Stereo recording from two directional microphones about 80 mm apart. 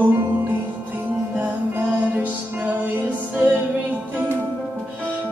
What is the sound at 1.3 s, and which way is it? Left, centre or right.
Music, centre.